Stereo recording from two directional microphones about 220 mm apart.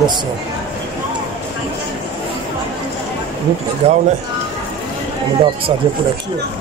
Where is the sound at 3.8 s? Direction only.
30° right (ahead or behind).